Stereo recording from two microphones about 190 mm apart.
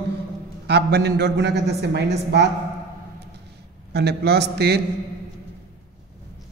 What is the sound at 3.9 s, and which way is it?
Speech, 60° right (ahead or behind).